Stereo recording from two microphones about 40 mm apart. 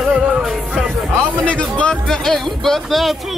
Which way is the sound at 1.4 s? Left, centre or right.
Left.